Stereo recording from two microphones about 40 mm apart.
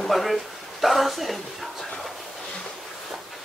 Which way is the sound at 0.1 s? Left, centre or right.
Centre.